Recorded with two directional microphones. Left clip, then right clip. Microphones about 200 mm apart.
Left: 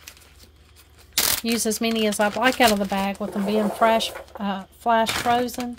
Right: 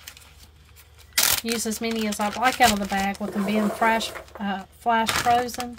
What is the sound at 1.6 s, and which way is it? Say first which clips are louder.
Speech: left 4 dB; 40° left (ahead or behind).